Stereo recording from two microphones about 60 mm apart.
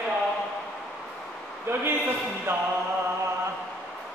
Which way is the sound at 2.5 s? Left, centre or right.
Right.